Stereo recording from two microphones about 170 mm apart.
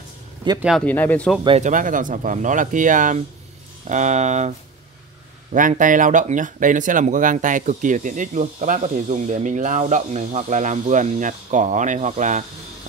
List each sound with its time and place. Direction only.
0.6 s speech: 5° right (ahead or behind)
0.8 s speech: 10° left (ahead or behind)
1.6 s speech: 50° right (ahead or behind)